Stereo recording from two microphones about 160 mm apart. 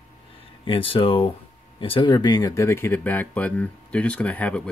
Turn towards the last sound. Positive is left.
turn(degrees=10)  # may be behind; listen again after turning